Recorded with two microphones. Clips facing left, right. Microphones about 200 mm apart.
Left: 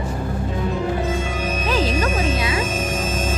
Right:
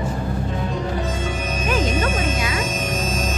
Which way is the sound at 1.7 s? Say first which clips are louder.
Even; 30° left (ahead or behind).